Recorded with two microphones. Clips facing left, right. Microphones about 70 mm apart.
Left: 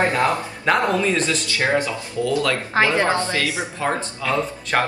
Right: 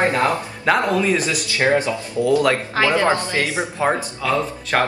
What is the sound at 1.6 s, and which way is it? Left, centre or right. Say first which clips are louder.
Speech: right 4 dB; right.